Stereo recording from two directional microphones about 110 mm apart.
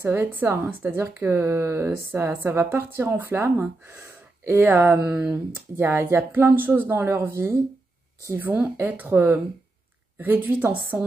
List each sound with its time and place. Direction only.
0.0 s speech: 20° right (ahead or behind)